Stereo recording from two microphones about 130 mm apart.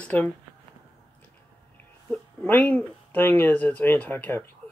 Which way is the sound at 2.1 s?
10° left (ahead or behind).